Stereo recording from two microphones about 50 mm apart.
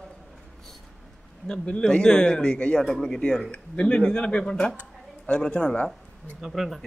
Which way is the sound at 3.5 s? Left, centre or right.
Left.